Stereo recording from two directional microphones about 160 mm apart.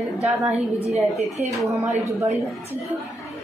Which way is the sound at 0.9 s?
45° right (ahead or behind).